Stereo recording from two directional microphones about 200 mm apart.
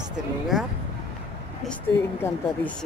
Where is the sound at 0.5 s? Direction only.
Centre (ahead or behind).